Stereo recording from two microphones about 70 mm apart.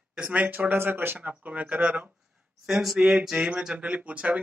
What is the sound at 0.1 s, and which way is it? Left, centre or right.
Speech, centre.